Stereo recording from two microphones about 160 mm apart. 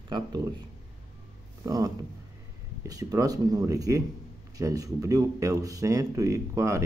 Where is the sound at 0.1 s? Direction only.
30° right (ahead or behind).